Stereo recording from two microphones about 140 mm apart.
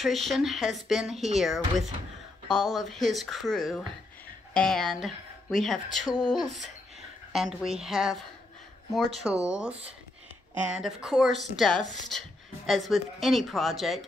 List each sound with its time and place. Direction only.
0.0 s speech: centre (ahead or behind)
6.0 s speech: 30° left (ahead or behind)
6.5 s a woman's voice: centre (ahead or behind)
9.2 s speech: 5° right (ahead or behind)